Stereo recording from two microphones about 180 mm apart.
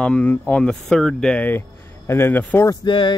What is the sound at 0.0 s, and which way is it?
Speech, 5° left (ahead or behind).